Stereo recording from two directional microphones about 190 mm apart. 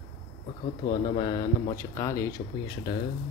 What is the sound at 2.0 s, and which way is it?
Speech, 15° left (ahead or behind).